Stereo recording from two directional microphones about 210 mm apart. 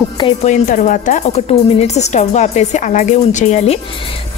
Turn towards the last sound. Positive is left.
turn(degrees=25)  # may be behind; listen again after turning